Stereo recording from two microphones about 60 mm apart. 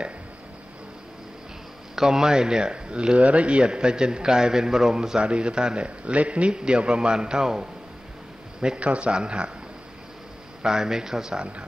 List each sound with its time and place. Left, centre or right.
2.0 s speech: centre
10.6 s speech: centre